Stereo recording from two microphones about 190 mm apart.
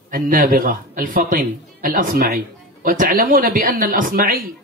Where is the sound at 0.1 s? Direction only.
45° right (ahead or behind).